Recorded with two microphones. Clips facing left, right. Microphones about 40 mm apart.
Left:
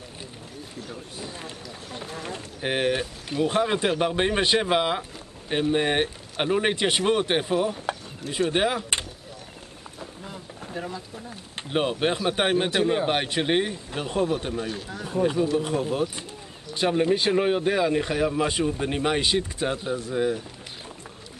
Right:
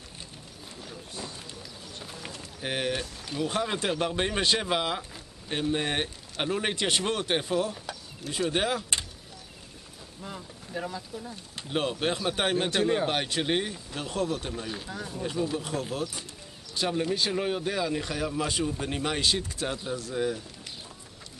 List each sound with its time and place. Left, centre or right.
2.2 s speech: left
10.2 s a sound: centre
11.7 s speech: centre
14.7 s speech: centre
15.5 s speech: centre